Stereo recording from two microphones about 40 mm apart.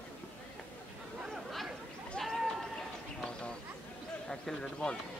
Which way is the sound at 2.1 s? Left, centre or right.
Centre.